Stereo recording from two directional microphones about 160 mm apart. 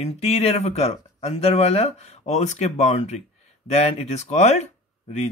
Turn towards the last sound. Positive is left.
turn(degrees=45)  # may be behind; listen again after turning